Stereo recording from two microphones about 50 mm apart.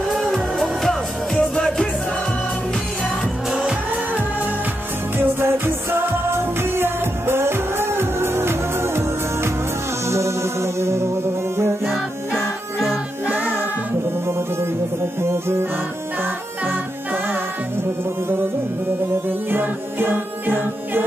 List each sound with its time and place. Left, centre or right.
0.1 s music: centre
5.2 s music: right
10.0 s music: right
15.2 s music: right
19.2 s music: right